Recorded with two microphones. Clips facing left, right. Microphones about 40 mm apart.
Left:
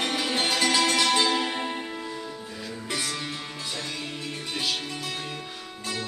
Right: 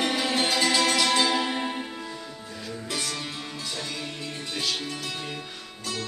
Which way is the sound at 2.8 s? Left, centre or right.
Centre.